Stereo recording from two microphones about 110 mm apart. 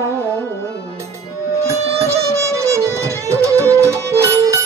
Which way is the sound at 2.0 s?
25° right (ahead or behind).